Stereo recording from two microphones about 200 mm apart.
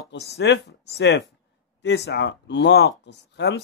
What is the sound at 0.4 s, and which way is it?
Speech, 55° left (ahead or behind).